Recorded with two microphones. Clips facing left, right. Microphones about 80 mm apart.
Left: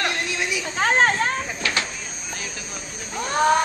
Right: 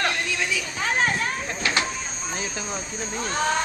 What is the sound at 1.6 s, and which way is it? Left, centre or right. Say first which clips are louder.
Vehicle: right 5 dB; right.